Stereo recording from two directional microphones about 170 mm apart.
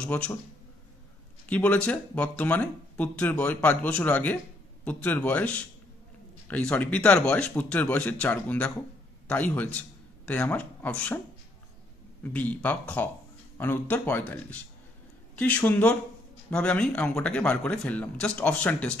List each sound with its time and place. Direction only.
0.0 s speech: 10° left (ahead or behind)
1.5 s a man's voice: 10° left (ahead or behind)
12.2 s speech: 10° left (ahead or behind)